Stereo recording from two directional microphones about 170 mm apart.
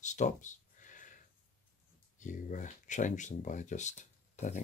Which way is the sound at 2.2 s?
50° left (ahead or behind).